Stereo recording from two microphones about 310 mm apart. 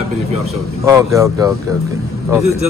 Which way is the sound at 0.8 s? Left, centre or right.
Centre.